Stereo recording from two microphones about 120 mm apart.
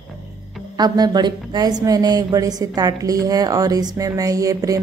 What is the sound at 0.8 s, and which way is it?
A woman's voice, 35° right (ahead or behind).